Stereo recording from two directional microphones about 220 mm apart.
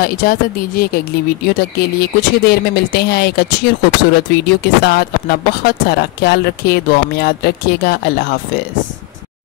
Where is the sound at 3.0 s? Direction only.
50° left (ahead or behind).